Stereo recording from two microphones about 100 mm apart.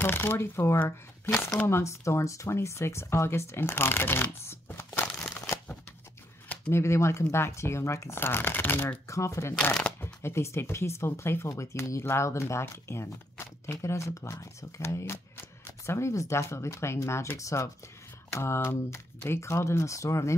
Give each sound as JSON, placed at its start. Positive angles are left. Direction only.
{"t": 0.0, "sound": "speech", "side_deg": 20}
{"t": 4.5, "sound": "a sound", "side_deg": 25}
{"t": 6.7, "sound": "speech", "side_deg": 30}